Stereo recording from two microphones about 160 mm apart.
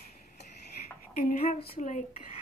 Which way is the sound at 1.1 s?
60° left (ahead or behind).